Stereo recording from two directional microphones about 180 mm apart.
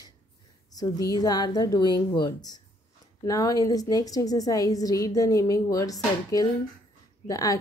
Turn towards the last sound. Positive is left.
turn(degrees=20)  # may be behind; listen again after turning